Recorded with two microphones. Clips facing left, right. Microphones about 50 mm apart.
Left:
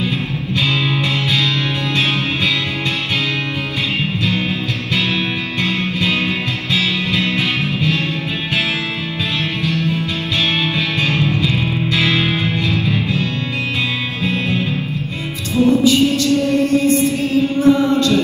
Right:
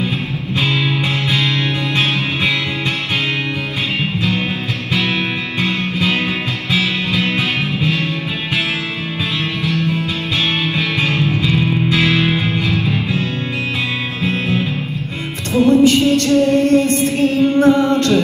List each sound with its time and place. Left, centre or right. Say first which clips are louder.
0.6 s music: even; right
5.6 s music: right 1 dB; right
11.0 s music: left 1 dB; right
15.5 s music: right 2 dB; right